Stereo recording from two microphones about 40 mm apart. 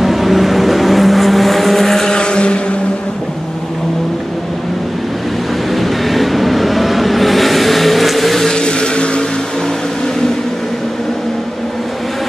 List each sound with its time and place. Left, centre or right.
0.0 s vehicle: centre; by 2.6 s left
5.7 s vehicle: centre
8.5 s vehicle: left